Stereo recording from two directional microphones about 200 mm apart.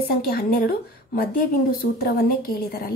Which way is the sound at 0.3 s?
45° left (ahead or behind).